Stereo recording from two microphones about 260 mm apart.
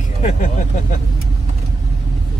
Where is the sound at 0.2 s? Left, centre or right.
Left.